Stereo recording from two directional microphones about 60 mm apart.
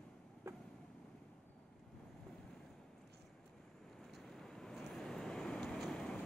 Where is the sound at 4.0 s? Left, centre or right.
Centre.